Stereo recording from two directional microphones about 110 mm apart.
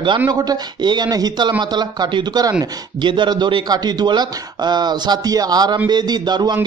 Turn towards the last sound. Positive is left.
turn(degrees=-40)  # may be behind; listen again after turning